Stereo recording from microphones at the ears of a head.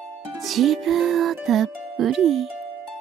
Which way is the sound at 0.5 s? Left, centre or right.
Right.